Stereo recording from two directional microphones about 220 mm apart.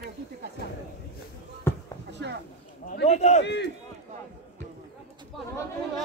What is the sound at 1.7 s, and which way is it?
Basketball bounce, 10° left (ahead or behind).